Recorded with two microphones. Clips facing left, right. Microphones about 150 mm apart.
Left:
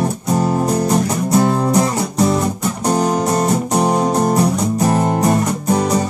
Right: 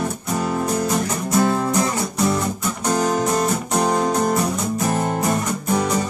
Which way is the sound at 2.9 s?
35° left (ahead or behind).